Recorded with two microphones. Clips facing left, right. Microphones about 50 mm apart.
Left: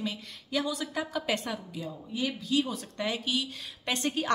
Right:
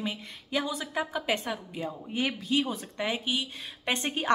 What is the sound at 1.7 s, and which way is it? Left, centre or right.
Speech, right.